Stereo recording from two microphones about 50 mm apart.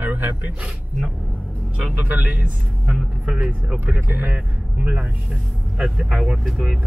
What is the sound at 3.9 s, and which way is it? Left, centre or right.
Speech, right.